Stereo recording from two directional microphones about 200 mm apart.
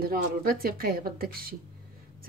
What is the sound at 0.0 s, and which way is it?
Speech, 50° right (ahead or behind).